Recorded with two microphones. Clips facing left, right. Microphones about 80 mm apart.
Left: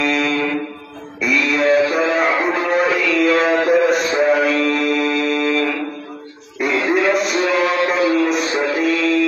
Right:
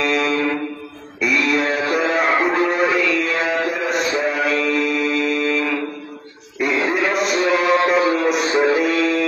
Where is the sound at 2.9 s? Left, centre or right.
Right.